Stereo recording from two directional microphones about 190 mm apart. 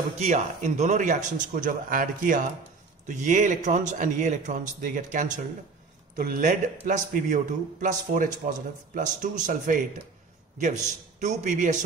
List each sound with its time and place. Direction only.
0.2 s speech: 40° right (ahead or behind)